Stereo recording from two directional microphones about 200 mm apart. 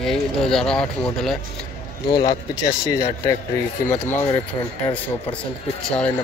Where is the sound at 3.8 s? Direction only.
10° left (ahead or behind).